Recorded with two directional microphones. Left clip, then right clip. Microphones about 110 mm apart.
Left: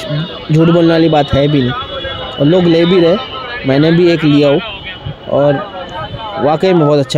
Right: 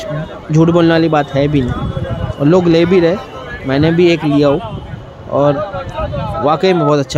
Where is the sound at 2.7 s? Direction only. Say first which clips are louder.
Left 1 dB; 25° left (ahead or behind).